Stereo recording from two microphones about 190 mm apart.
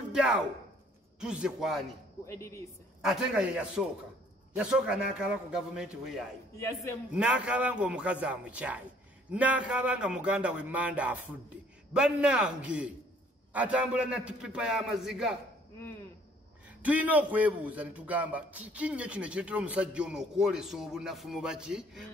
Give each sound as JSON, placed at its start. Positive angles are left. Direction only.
{"t": 0.1, "sound": "a man's voice", "side_deg": -5}
{"t": 2.2, "sound": "speech", "side_deg": 15}
{"t": 3.0, "sound": "a man's voice", "side_deg": -5}
{"t": 6.5, "sound": "speech", "side_deg": 15}
{"t": 7.1, "sound": "a man's voice", "side_deg": -5}
{"t": 16.8, "sound": "a man's voice", "side_deg": -10}